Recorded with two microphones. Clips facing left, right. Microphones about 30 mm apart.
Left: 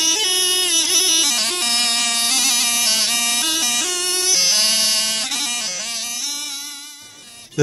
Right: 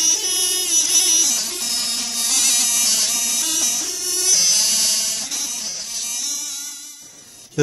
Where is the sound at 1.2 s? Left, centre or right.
Left.